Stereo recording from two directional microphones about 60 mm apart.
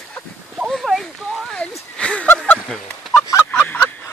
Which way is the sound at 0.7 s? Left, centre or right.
Centre.